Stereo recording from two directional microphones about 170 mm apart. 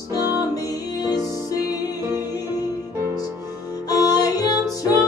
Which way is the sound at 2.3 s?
20° left (ahead or behind).